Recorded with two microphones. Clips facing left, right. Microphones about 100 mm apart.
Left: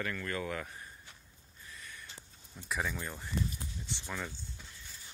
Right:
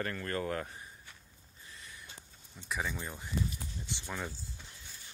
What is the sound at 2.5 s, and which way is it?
Speech, 5° left (ahead or behind).